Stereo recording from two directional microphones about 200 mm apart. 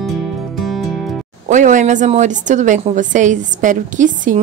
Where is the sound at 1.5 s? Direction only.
40° right (ahead or behind).